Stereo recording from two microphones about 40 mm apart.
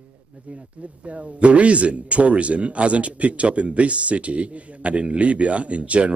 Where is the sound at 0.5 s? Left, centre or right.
Right.